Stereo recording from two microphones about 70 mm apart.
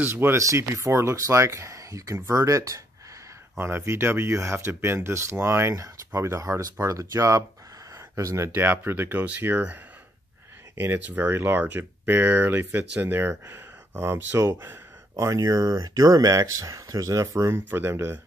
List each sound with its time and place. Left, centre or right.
0.0 s speech: right
0.4 s speech: right
3.5 s speech: right
10.8 s speech: right
14.6 s a sound: right
15.2 s speech: right
17.6 s speech: right